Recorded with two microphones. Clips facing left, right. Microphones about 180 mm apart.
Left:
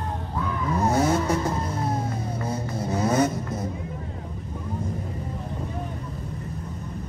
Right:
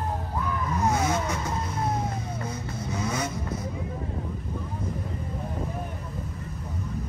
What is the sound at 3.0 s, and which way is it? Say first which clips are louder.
Vehicle: left 9 dB; 50° left (ahead or behind).